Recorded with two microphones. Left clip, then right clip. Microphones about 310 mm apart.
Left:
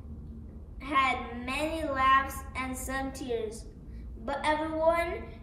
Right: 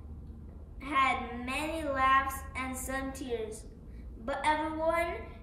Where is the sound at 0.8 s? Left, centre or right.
Centre.